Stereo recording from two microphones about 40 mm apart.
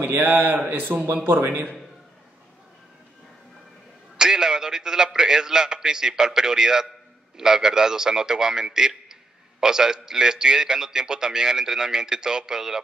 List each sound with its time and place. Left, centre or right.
0.0 s a man's voice: right
4.2 s a man's voice: centre